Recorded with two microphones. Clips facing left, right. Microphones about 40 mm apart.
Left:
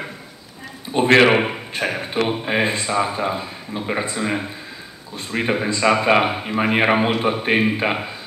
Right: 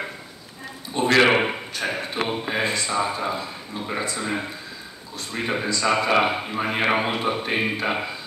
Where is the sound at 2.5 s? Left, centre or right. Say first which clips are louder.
Left 4 dB; left.